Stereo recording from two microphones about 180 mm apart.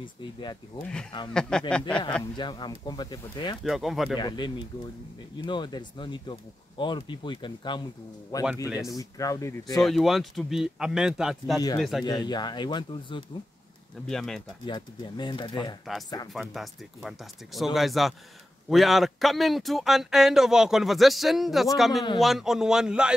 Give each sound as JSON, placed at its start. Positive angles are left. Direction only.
{"t": 0.0, "sound": "speech", "side_deg": 25}
{"t": 1.3, "sound": "speech", "side_deg": 5}
{"t": 2.3, "sound": "speech", "side_deg": 25}
{"t": 3.6, "sound": "speech", "side_deg": 0}
{"t": 4.2, "sound": "speech", "side_deg": 25}
{"t": 9.8, "sound": "speech", "side_deg": 0}
{"t": 12.0, "sound": "speech", "side_deg": 25}
{"t": 14.0, "sound": "speech", "side_deg": 5}
{"t": 14.7, "sound": "speech", "side_deg": 25}
{"t": 16.3, "sound": "speech", "side_deg": 0}